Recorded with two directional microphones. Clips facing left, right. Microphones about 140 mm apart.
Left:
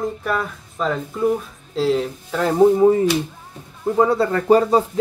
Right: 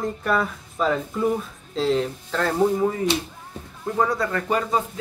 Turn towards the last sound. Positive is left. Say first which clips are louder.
# left 8 dB
turn(degrees=35)  # may be behind; listen again after turning